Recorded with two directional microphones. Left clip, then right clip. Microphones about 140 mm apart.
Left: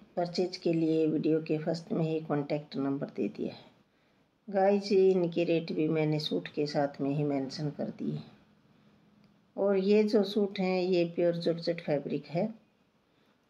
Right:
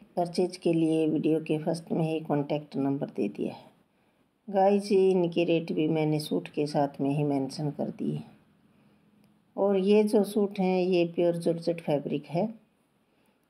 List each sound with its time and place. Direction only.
0.1 s speech: 25° right (ahead or behind)
9.6 s speech: 25° right (ahead or behind)